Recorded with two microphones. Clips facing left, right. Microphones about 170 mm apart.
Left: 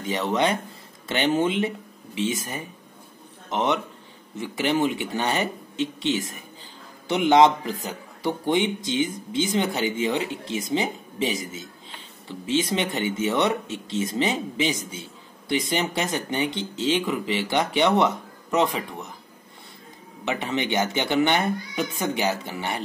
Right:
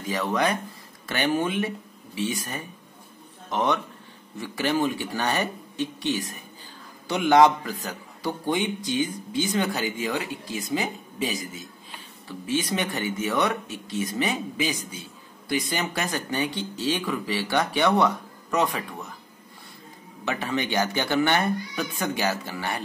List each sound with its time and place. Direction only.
0.0 s speech: 25° left (ahead or behind)
20.2 s speech: 20° left (ahead or behind)